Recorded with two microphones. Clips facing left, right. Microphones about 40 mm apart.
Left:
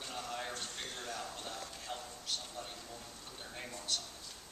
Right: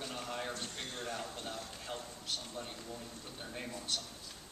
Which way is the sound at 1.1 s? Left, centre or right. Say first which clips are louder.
Right 1 dB; right.